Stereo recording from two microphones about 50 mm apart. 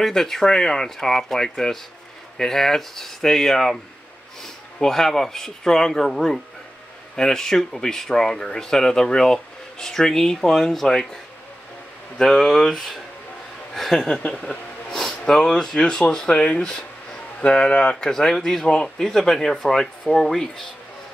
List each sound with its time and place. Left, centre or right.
0.0 s speech: centre
12.2 s speech: centre
14.0 s speech: centre
18.1 s speech: centre